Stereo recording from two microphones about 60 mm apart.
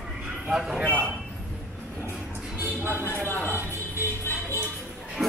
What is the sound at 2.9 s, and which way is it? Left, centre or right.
Music, left.